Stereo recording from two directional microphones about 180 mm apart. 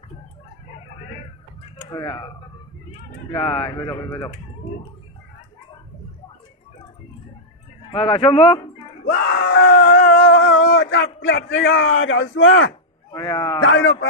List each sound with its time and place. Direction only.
1.9 s speech: 20° left (ahead or behind)
3.4 s speech: 30° left (ahead or behind)
7.9 s speech: 30° left (ahead or behind)
9.0 s groan: 65° left (ahead or behind); by 12.7 s 90° left
13.1 s speech: 25° left (ahead or behind)
13.6 s a man's voice: 90° left